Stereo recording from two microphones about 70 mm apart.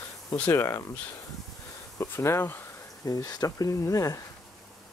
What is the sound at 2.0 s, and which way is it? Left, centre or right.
Speech, left.